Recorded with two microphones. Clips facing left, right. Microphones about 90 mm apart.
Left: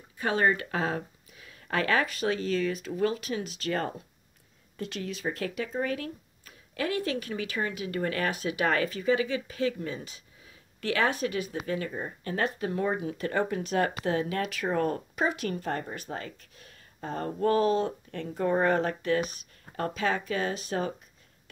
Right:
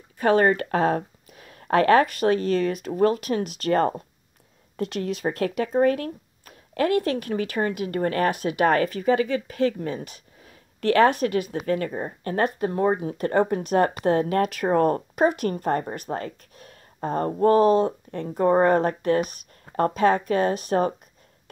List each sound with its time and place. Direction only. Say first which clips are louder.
0.2 s speech: right 7 dB; 50° right (ahead or behind)
11.5 s speech: right 7 dB; 50° right (ahead or behind)